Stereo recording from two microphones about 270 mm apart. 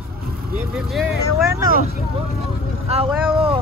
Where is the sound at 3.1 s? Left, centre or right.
Centre.